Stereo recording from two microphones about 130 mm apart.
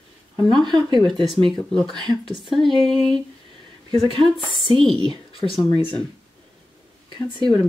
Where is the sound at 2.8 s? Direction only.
Centre (ahead or behind).